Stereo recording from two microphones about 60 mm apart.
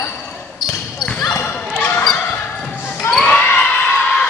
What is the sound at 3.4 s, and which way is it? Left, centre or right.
Basketball bounce, left.